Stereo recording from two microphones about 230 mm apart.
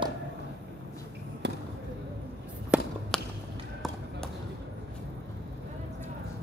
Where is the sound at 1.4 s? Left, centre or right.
Right.